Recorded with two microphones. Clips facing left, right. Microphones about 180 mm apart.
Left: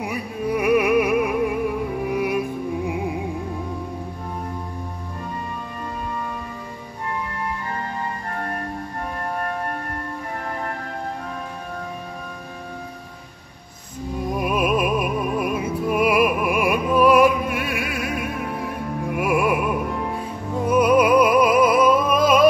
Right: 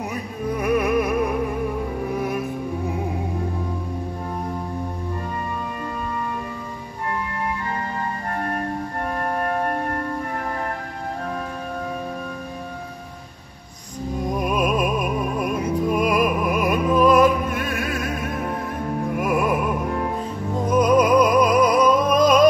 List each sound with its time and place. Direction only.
0.0 s music: 10° left (ahead or behind)
14.3 s music: 5° left (ahead or behind)
20.6 s music: 10° left (ahead or behind)